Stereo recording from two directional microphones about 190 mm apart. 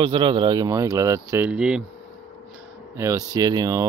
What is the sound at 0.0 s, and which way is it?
Speech, 25° right (ahead or behind).